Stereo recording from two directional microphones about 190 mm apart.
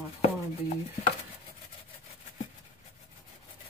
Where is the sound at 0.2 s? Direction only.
35° left (ahead or behind).